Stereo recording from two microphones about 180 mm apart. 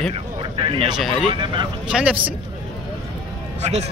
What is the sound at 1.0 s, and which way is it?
Speech, centre (ahead or behind).